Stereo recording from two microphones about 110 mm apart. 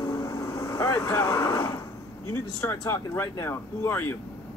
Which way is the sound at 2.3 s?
25° left (ahead or behind).